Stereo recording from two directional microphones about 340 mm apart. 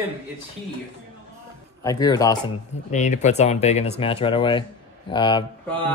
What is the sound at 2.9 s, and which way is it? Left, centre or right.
A man's voice, left.